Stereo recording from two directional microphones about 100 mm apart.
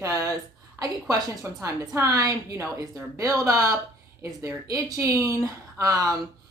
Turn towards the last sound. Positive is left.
turn(degrees=-35)  # may be behind; listen again after turning